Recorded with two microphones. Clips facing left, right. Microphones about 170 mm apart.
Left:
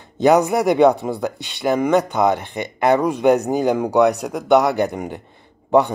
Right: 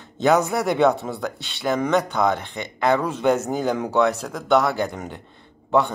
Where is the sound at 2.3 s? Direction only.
55° left (ahead or behind).